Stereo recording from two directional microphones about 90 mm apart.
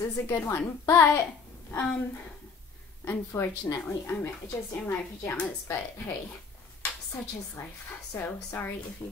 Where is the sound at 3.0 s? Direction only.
30° left (ahead or behind).